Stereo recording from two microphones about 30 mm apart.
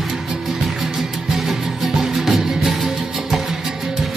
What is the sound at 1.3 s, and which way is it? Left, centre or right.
Music, centre.